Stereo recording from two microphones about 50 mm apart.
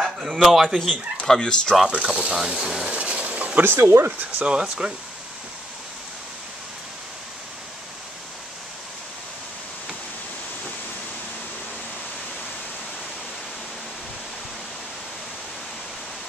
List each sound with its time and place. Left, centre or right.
0.0 s a sound: centre
0.5 s speech: centre
1.9 s speech: centre
3.5 s speech: right
4.5 s speech: centre